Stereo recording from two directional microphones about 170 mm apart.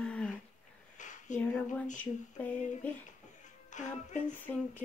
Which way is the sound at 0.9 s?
45° left (ahead or behind).